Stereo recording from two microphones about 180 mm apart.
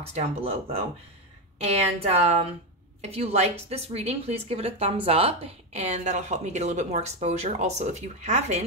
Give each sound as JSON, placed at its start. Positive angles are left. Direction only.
{"t": 0.0, "sound": "a woman's voice", "side_deg": -35}